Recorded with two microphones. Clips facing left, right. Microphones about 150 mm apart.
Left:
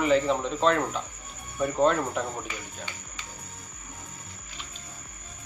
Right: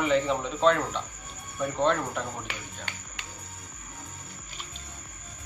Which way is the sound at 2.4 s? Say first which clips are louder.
Left 1 dB; 70° right (ahead or behind).